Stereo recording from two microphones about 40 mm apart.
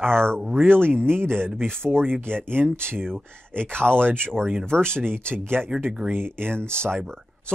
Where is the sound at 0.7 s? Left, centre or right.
Right.